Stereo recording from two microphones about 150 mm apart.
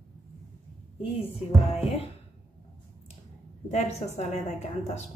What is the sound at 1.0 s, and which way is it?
Speech, 40° left (ahead or behind).